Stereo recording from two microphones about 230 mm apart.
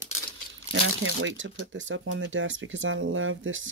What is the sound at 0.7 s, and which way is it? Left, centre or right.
Speech, right.